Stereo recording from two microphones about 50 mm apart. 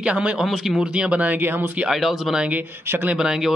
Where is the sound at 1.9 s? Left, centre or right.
Centre.